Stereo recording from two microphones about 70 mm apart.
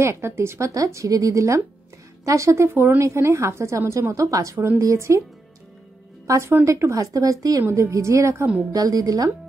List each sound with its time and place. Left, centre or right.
0.0 s speech: right
6.6 s speech: right
7.7 s speech: right
8.7 s speech: right